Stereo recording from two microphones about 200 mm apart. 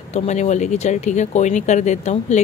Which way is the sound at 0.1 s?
35° left (ahead or behind).